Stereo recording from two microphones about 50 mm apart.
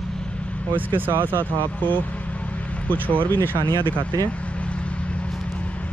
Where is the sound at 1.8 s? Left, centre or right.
Left.